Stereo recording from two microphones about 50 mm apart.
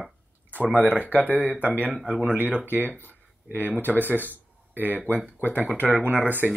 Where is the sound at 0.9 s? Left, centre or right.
Right.